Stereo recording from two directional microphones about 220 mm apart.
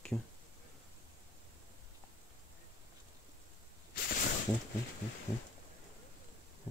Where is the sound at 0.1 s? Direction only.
15° left (ahead or behind).